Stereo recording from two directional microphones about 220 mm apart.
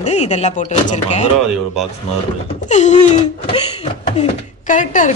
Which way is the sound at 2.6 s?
30° left (ahead or behind).